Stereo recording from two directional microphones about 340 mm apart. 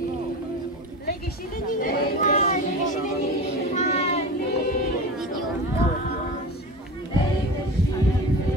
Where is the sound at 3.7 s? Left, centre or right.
Centre.